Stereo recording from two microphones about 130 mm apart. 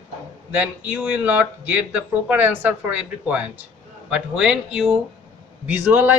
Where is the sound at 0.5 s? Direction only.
10° right (ahead or behind).